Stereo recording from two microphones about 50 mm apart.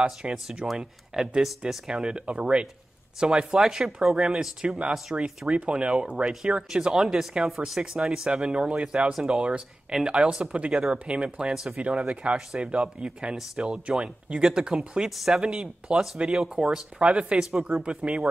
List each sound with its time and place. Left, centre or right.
0.0 s speech: right
0.7 s speech: centre
6.7 s speech: centre
15.0 s speech: centre
15.4 s speech: centre